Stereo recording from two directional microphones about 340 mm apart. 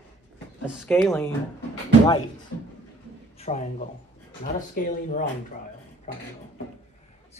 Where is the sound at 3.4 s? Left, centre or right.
Centre.